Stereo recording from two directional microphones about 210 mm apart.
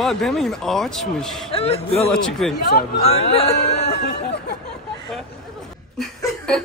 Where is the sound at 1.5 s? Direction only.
30° left (ahead or behind).